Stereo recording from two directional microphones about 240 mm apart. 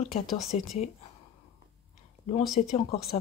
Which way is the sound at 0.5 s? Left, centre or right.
Left.